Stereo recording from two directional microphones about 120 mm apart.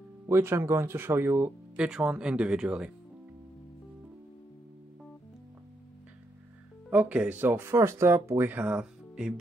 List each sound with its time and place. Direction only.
0.3 s speech: 20° right (ahead or behind)
6.9 s speech: 10° right (ahead or behind)